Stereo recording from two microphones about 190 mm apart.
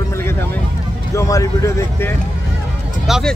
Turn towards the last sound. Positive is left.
turn(degrees=0)  # may be behind; listen again after turning